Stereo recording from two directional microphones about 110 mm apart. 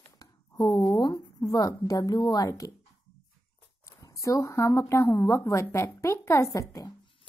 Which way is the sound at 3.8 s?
30° left (ahead or behind).